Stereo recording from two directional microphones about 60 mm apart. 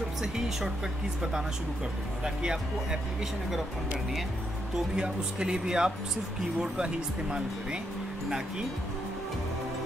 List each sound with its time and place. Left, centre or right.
2.2 s speech: centre
4.7 s speech: centre